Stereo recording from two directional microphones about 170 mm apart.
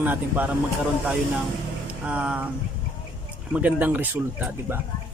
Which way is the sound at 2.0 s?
5° right (ahead or behind).